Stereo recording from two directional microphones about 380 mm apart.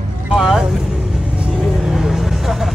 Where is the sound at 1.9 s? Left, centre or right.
Centre.